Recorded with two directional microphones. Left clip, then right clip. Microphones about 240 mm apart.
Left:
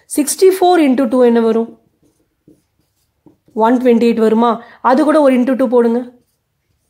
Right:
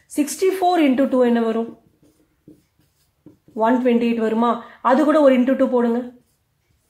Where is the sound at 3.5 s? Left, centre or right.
Left.